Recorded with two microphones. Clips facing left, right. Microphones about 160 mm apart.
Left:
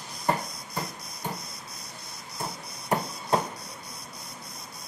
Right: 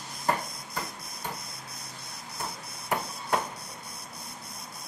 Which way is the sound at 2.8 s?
30° left (ahead or behind).